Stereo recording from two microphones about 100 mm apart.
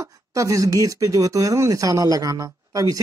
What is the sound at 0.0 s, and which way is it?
Speech, 35° right (ahead or behind).